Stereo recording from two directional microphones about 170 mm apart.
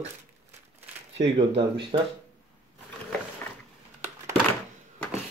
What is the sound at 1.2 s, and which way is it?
Speech, 30° right (ahead or behind).